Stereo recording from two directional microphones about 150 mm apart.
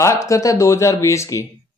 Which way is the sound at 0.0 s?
20° left (ahead or behind).